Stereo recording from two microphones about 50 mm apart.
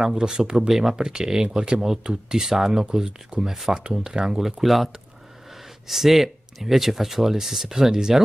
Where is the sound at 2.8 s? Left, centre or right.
Centre.